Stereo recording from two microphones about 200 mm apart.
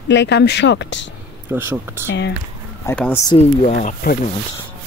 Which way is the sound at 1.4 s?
10° right (ahead or behind).